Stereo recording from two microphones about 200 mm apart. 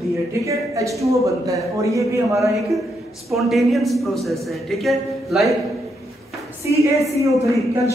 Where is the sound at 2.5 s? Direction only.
Centre (ahead or behind).